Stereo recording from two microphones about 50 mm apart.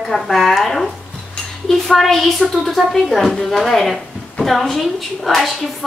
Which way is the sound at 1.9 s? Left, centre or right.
Centre.